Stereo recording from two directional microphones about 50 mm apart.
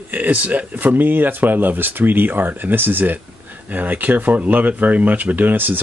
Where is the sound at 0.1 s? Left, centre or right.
Right.